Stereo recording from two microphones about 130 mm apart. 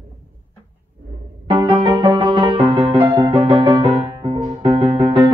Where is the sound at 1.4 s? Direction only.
40° right (ahead or behind).